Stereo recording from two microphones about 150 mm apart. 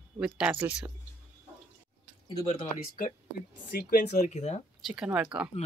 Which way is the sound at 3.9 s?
60° left (ahead or behind).